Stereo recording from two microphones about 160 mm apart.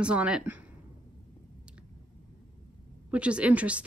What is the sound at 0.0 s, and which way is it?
Speech, 5° right (ahead or behind).